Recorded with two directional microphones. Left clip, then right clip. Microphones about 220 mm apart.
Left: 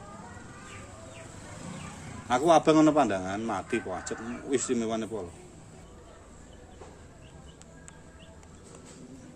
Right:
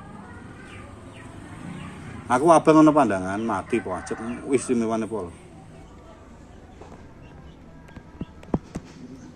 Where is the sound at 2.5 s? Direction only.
15° right (ahead or behind).